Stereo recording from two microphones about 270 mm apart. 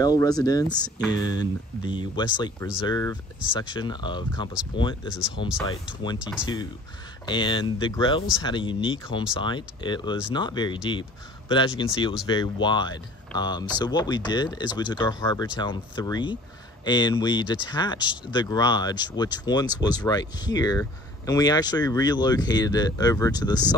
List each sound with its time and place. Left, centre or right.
0.0 s speech: centre